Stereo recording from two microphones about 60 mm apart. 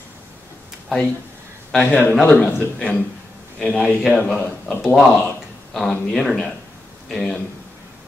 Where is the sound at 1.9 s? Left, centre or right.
Left.